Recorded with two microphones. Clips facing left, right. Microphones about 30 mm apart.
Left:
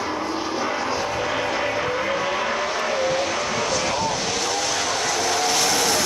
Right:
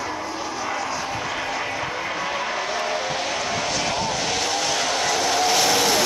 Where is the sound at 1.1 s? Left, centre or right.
Centre.